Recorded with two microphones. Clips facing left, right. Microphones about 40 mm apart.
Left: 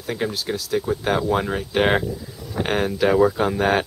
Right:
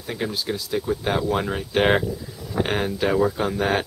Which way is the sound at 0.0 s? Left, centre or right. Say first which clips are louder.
Left 2 dB; centre.